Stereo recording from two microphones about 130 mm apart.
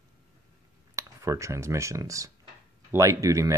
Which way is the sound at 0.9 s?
25° right (ahead or behind).